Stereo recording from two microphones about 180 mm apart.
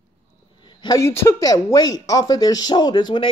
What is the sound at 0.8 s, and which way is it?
Speech, 20° left (ahead or behind).